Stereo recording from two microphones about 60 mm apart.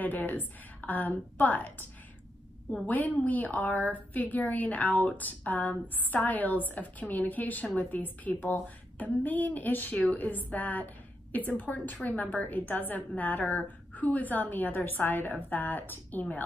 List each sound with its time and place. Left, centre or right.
0.0 s a woman's voice: left
2.9 s a woman's voice: left